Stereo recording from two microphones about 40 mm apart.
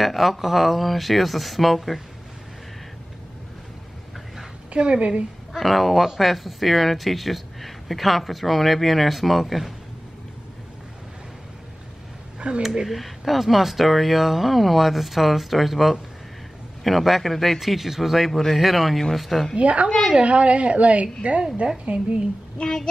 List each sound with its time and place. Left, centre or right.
0.0 s speech: centre
4.7 s a woman's voice: right
5.5 s speech: centre
12.4 s speech: right
12.8 s speech: centre
19.5 s a woman's voice: right